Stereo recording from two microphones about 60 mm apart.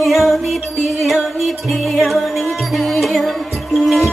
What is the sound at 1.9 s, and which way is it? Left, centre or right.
Music, centre.